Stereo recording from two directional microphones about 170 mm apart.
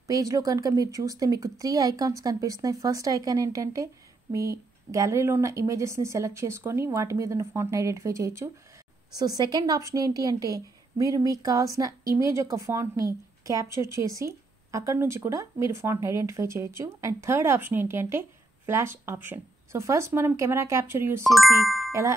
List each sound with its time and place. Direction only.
0.0 s a woman's voice: 20° right (ahead or behind)
21.2 s speech: centre (ahead or behind)